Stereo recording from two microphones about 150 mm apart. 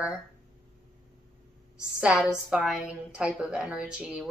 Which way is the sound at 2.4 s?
5° right (ahead or behind).